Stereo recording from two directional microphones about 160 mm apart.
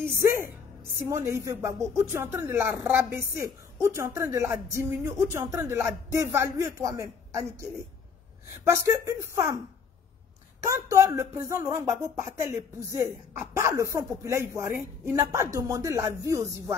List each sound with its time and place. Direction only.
0.2 s speech: 15° right (ahead or behind)
10.7 s speech: 20° right (ahead or behind)